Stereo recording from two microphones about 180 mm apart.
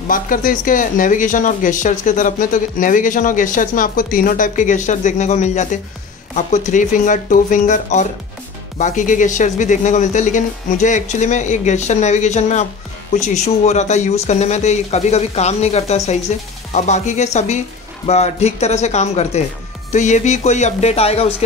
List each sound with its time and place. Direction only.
0.1 s speech: 50° left (ahead or behind)